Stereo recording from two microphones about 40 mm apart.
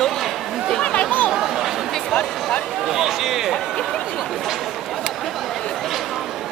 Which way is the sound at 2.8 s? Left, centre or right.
Centre.